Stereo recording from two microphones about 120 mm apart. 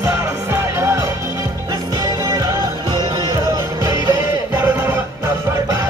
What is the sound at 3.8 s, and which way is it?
Music, 30° right (ahead or behind).